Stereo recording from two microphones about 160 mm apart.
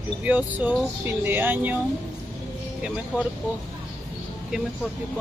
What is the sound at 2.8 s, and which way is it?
Speech, 5° right (ahead or behind).